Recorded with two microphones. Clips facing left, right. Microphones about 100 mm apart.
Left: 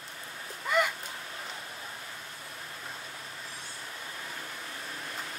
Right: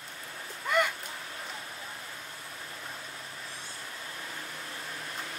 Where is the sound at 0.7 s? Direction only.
Centre (ahead or behind).